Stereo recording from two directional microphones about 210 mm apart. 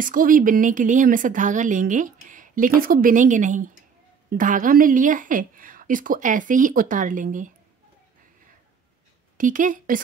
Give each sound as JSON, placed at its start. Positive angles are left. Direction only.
{"t": 0.0, "sound": "a woman's voice", "side_deg": -40}
{"t": 9.4, "sound": "a woman's voice", "side_deg": -40}